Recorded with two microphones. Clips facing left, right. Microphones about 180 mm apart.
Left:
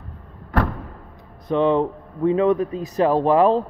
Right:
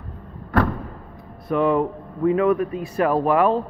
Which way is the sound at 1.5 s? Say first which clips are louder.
Left 1 dB; 25° left (ahead or behind).